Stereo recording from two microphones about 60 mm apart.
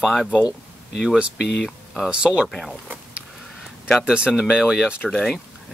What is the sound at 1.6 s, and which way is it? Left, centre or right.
Speech, centre.